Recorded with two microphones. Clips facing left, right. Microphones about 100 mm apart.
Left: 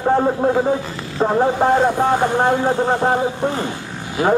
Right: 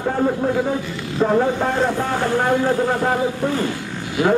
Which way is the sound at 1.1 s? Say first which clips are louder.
Left 1 dB; 30° left (ahead or behind).